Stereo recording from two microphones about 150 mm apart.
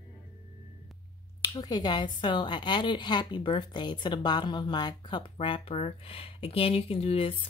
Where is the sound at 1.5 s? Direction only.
25° left (ahead or behind).